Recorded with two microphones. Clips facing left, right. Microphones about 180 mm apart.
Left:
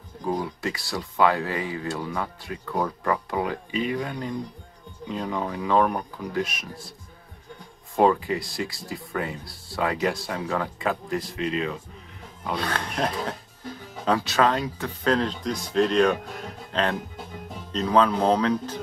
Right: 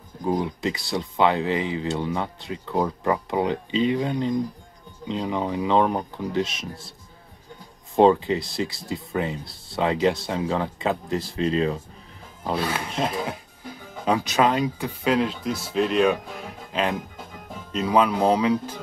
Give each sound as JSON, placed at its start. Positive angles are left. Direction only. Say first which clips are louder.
{"t": 0.2, "sound": "speech", "louder": "right 3 dB", "side_deg": -20}
{"t": 7.9, "sound": "speech", "louder": "right 4 dB", "side_deg": -25}
{"t": 12.5, "sound": "speech", "louder": "right 1 dB", "side_deg": -5}